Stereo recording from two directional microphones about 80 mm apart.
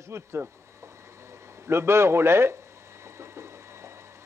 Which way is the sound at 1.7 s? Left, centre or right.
Right.